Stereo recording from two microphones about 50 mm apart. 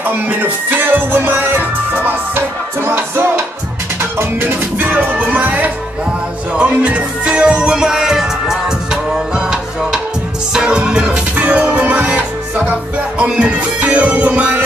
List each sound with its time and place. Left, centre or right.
0.0 s music: right
4.8 s music: right